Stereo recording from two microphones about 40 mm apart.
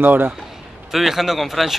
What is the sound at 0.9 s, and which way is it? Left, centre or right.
Speech, centre.